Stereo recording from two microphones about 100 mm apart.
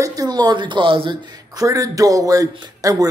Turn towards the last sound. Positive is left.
turn(degrees=-35)  # may be behind; listen again after turning